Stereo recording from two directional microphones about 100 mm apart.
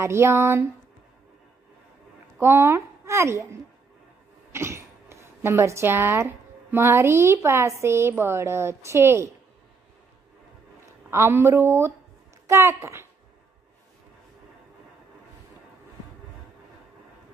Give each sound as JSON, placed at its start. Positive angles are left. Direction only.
{"t": 0.0, "sound": "a woman's voice", "side_deg": -25}
{"t": 2.3, "sound": "a child's voice", "side_deg": -25}
{"t": 4.5, "sound": "a sound", "side_deg": -25}
{"t": 6.7, "sound": "a woman's voice", "side_deg": -25}
{"t": 11.1, "sound": "a woman's voice", "side_deg": -25}